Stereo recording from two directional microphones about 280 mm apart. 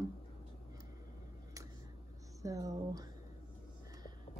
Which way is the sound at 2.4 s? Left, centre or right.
Centre.